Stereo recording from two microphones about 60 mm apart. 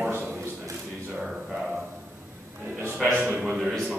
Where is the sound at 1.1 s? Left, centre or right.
Centre.